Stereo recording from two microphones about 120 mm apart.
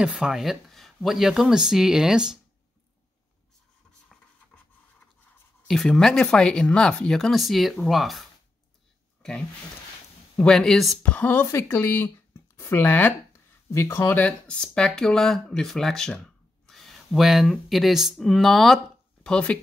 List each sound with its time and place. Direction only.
0.0 s speech: 5° right (ahead or behind)
5.7 s speech: 5° left (ahead or behind)
11.0 s speech: 15° left (ahead or behind)